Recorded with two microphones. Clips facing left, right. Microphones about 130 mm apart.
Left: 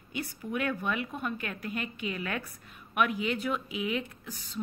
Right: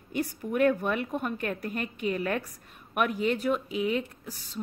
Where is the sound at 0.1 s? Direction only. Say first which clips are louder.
Right 5 dB; 45° right (ahead or behind).